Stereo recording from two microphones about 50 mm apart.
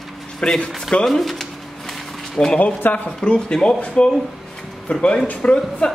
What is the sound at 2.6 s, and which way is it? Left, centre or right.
Speech, left.